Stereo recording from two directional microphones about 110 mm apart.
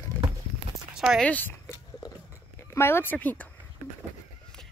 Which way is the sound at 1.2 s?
15° left (ahead or behind).